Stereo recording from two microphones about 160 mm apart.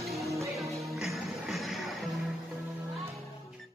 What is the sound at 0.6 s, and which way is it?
Music, centre (ahead or behind).